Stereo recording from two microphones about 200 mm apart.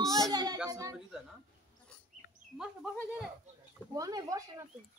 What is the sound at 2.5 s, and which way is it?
Speech, 5° right (ahead or behind).